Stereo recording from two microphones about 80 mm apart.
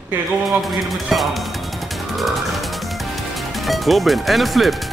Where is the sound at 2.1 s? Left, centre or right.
Centre.